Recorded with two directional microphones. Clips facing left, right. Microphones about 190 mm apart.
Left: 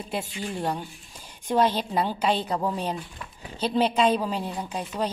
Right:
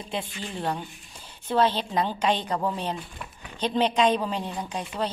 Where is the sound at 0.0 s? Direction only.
10° left (ahead or behind).